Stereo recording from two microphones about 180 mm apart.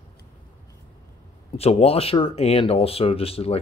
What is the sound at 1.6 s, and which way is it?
Speech, 35° left (ahead or behind).